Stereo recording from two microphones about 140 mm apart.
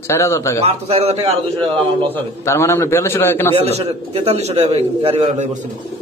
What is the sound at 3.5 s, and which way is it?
A man's voice, 45° right (ahead or behind).